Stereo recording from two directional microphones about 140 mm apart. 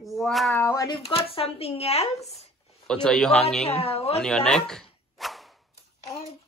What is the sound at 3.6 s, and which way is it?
Speech, 45° left (ahead or behind).